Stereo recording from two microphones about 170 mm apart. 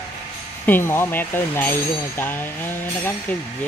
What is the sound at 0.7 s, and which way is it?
Speech, 15° left (ahead or behind).